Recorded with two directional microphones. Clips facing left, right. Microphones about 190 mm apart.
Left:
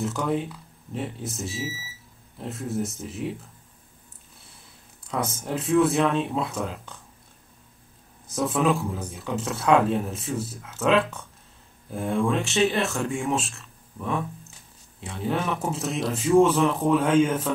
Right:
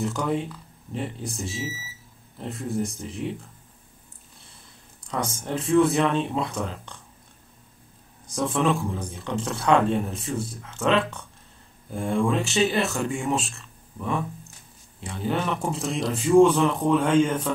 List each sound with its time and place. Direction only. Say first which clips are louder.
0.0 s speech: even; centre (ahead or behind)
5.0 s a sound: left 1 dB; 5° left (ahead or behind)
5.4 s speech: right 1 dB; centre (ahead or behind)
8.3 s speech: even; 5° left (ahead or behind)